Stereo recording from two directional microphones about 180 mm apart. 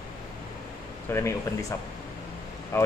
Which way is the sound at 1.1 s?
15° left (ahead or behind).